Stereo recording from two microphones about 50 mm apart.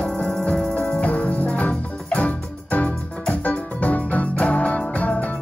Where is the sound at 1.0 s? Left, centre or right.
Left.